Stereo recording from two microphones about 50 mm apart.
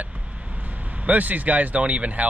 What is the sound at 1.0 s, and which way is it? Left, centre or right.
Speech, right.